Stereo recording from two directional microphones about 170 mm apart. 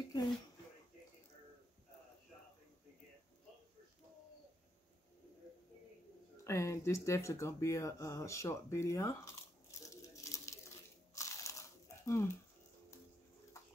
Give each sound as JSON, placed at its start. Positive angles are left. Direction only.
{"t": 6.4, "sound": "speech", "side_deg": 15}
{"t": 11.1, "sound": "crunch", "side_deg": 20}